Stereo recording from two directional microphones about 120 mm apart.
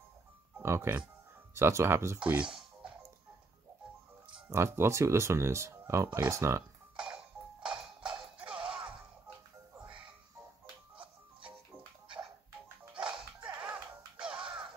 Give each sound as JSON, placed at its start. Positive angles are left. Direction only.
{"t": 0.6, "sound": "speech", "side_deg": -20}
{"t": 2.1, "sound": "a sound", "side_deg": -10}
{"t": 4.5, "sound": "speech", "side_deg": -20}
{"t": 7.0, "sound": "music", "side_deg": -5}
{"t": 12.9, "sound": "music", "side_deg": -10}